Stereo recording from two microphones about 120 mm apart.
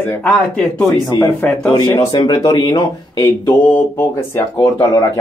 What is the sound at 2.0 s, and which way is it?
Speech, 35° left (ahead or behind).